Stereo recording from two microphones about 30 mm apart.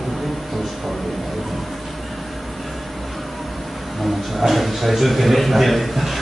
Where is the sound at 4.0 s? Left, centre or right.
Centre.